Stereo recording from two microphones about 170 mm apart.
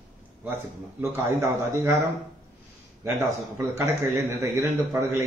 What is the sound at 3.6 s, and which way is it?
A man's voice, 15° right (ahead or behind).